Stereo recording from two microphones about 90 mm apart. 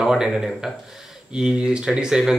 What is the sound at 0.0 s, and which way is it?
Speech, 5° right (ahead or behind).